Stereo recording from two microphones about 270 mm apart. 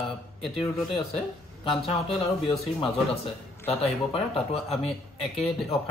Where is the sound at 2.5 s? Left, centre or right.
Centre.